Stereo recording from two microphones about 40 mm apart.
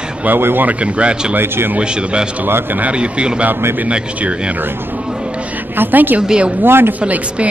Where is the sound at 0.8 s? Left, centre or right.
Right.